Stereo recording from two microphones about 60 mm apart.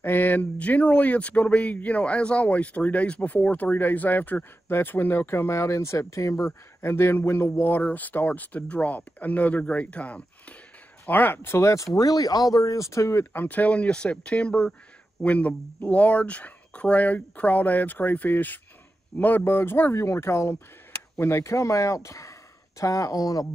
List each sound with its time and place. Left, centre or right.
0.0 s speech: left
6.8 s speech: left
11.1 s speech: left
11.6 s speech: left